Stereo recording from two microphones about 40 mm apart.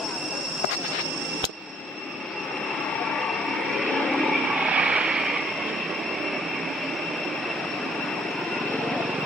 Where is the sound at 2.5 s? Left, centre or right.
Centre.